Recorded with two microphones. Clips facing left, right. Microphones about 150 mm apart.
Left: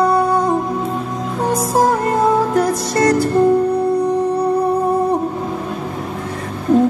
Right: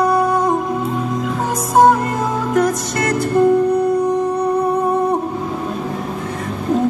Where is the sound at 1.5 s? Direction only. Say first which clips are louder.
Right 3 dB; 30° left (ahead or behind).